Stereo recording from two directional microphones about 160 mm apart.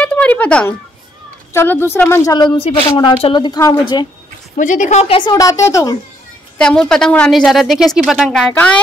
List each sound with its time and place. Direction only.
0.0 s a sound: 10° left (ahead or behind)
1.5 s a woman's voice: 15° left (ahead or behind)
2.5 s a woman's voice: 35° left (ahead or behind)
4.6 s a woman's voice: 50° left (ahead or behind); by 5.9 s 20° left (ahead or behind)
6.6 s a woman's voice: 5° left (ahead or behind)